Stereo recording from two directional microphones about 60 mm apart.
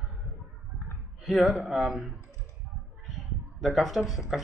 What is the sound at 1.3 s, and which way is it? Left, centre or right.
Speech, centre.